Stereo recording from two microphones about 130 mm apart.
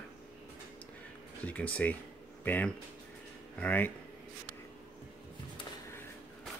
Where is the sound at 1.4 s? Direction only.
10° left (ahead or behind).